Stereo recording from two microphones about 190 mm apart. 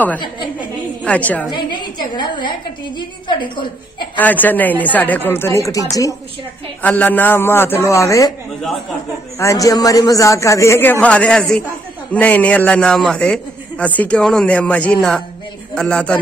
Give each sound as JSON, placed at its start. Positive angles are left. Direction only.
{"t": 1.0, "sound": "a man's voice", "side_deg": 10}
{"t": 1.5, "sound": "a woman's voice", "side_deg": 25}
{"t": 4.2, "sound": "a man's voice", "side_deg": 10}
{"t": 9.4, "sound": "a man's voice", "side_deg": 15}